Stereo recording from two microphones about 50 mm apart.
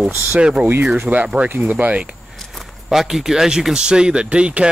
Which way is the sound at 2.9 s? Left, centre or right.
Centre.